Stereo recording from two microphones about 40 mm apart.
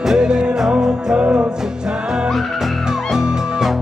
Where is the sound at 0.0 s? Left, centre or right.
Centre.